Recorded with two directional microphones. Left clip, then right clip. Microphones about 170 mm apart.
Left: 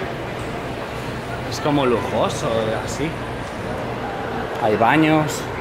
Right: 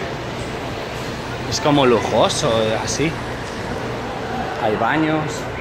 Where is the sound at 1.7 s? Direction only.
25° right (ahead or behind).